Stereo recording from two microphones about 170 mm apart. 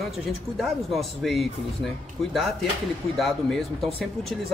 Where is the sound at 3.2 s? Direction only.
Centre (ahead or behind).